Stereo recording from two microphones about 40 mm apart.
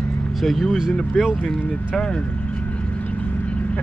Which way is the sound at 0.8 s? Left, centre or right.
Centre.